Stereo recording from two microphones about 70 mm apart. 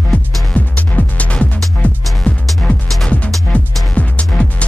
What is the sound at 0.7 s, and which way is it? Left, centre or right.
Music, centre.